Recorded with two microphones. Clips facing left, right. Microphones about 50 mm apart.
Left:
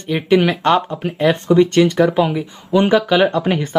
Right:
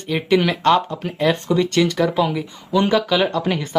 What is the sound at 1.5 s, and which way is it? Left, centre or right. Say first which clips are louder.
Speech: left 5 dB; left.